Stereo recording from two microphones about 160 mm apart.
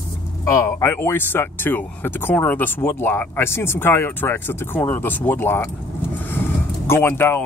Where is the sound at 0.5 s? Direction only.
20° left (ahead or behind).